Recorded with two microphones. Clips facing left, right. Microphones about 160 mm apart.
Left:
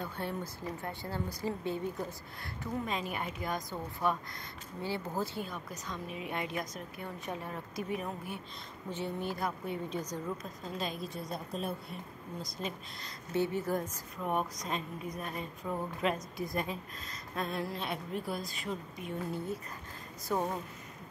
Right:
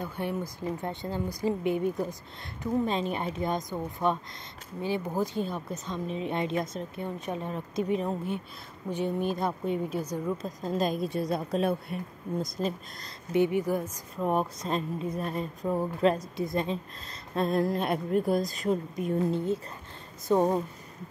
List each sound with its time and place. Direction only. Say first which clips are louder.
0.0 s speech: right 5 dB; 15° right (ahead or behind)
2.8 s a woman's voice: right 7 dB; 30° right (ahead or behind)
5.4 s a woman's voice: right 8 dB; 25° right (ahead or behind)
9.8 s speech: right 5 dB; 10° right (ahead or behind)
10.3 s a woman's voice: right 9 dB; 40° right (ahead or behind)
11.1 s speech: right 10 dB; 75° right (ahead or behind)
12.4 s a woman's voice: right 9 dB; 50° right (ahead or behind)
13.3 s speech: right 6 dB; 15° right (ahead or behind)
14.1 s a woman's voice: right 6 dB; 30° right (ahead or behind)
17.4 s a woman's voice: right 10 dB; 40° right (ahead or behind)
19.3 s a woman's voice: right 8 dB; 20° right (ahead or behind)
20.3 s speech: right 9 dB; 35° right (ahead or behind)